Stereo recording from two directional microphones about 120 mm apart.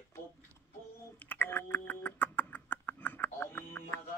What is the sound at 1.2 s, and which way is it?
Rodents, 15° left (ahead or behind).